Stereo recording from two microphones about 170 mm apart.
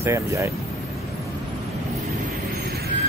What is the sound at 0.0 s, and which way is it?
Speech, 15° right (ahead or behind).